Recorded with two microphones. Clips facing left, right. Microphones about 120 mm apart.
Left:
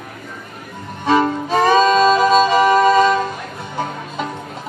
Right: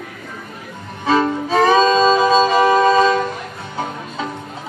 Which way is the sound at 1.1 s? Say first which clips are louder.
Right 1 dB; 15° left (ahead or behind).